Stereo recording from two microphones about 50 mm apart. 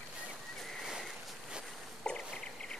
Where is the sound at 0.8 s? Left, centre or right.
Centre.